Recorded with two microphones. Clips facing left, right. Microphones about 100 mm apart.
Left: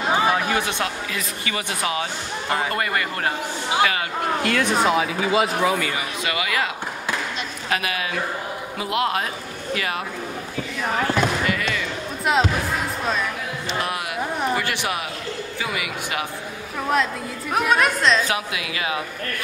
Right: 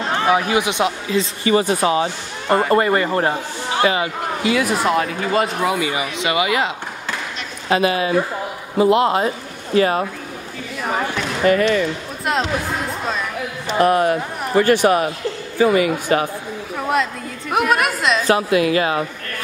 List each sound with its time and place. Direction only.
0.3 s speech: 15° right (ahead or behind)
4.4 s speech: 5° right (ahead or behind)
5.8 s speech: 15° right (ahead or behind)
7.7 s speech: 30° right (ahead or behind)
11.4 s speech: 40° right (ahead or behind)
12.3 s speech: centre (ahead or behind)
13.7 s speech: 45° right (ahead or behind)
16.9 s speech: 5° right (ahead or behind)
18.2 s speech: 40° right (ahead or behind)